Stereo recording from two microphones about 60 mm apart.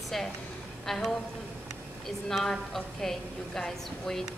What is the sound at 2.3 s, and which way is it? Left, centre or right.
A woman's voice, centre.